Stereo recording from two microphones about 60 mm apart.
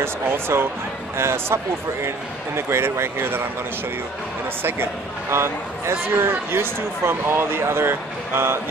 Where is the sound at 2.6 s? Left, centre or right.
Right.